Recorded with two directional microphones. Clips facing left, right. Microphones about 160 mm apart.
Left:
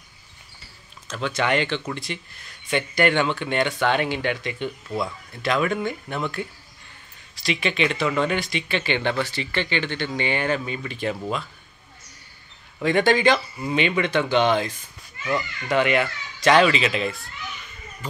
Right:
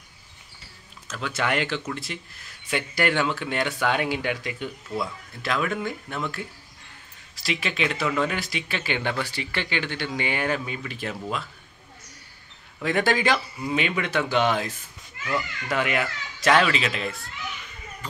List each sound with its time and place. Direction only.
1.0 s speech: 5° right (ahead or behind)
12.8 s speech: 5° right (ahead or behind)